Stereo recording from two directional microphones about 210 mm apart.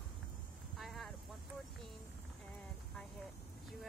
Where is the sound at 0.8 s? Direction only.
Centre (ahead or behind).